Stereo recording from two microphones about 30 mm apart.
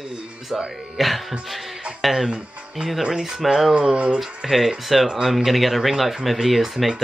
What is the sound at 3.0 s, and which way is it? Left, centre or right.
Speech, centre.